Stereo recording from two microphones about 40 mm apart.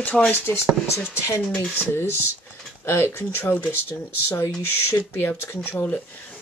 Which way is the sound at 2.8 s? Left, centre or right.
Left.